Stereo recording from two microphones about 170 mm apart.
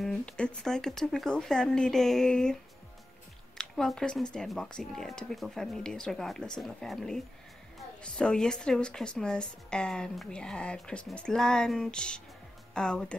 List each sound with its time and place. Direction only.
0.0 s a woman's voice: 5° left (ahead or behind)
3.5 s a woman's voice: 5° left (ahead or behind)